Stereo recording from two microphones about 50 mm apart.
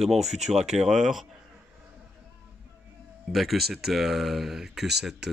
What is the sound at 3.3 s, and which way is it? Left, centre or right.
Speech, centre.